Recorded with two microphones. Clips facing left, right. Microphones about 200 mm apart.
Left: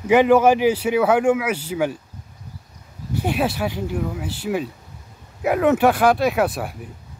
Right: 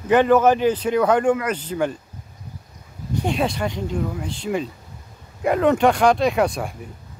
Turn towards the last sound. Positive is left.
turn(degrees=5)  # may be behind; listen again after turning